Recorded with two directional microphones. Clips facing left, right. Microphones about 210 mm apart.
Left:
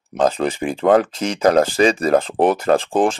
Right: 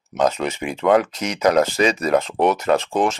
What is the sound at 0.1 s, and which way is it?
Speech, 35° left (ahead or behind).